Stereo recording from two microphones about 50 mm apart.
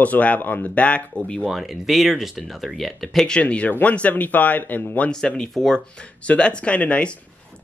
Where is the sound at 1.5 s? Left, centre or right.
Centre.